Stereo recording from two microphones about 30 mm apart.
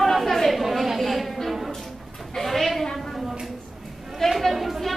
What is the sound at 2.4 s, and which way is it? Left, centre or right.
Speech, centre.